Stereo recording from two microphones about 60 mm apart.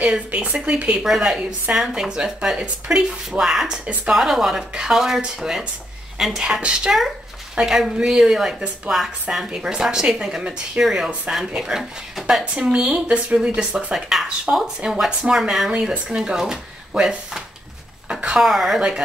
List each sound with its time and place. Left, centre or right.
0.0 s a woman's voice: right
1.0 s a woman's voice: centre
18.4 s a woman's voice: centre